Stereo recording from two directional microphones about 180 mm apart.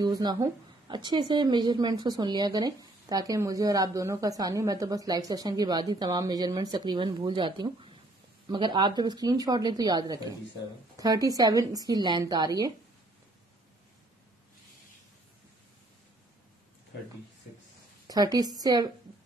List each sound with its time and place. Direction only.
0.0 s a woman's voice: 20° right (ahead or behind)
18.0 s a woman's voice: 20° right (ahead or behind)